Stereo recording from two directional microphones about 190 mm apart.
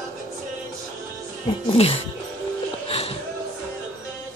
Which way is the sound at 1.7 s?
30° left (ahead or behind).